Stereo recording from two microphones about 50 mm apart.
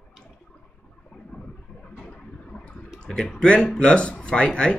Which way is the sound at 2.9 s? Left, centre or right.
Centre.